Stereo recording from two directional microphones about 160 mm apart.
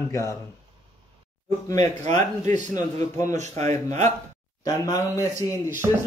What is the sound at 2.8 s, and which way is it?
Speech, 20° left (ahead or behind).